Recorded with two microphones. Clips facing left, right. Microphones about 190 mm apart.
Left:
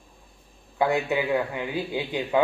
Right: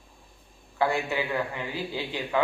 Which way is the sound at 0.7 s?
20° left (ahead or behind).